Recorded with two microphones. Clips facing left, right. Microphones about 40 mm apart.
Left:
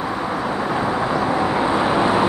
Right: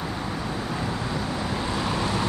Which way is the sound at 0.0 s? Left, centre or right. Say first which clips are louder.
Left 8 dB; left.